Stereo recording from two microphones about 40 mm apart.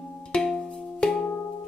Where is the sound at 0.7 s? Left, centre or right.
Left.